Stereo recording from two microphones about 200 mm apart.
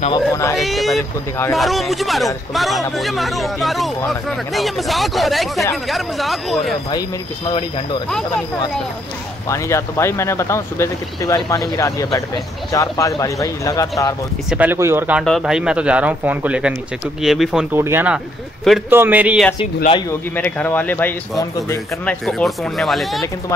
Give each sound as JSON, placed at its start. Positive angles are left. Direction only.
{"t": 0.1, "sound": "speech", "side_deg": 15}
{"t": 0.6, "sound": "speech", "side_deg": 0}
{"t": 6.9, "sound": "speech", "side_deg": 25}
{"t": 9.5, "sound": "speech", "side_deg": 15}
{"t": 14.5, "sound": "speech", "side_deg": -10}
{"t": 20.1, "sound": "speech", "side_deg": 10}
{"t": 22.0, "sound": "speech", "side_deg": 0}